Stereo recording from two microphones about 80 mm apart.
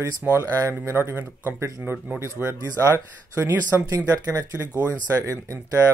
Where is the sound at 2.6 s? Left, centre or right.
Right.